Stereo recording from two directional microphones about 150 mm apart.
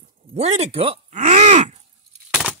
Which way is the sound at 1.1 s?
50° right (ahead or behind).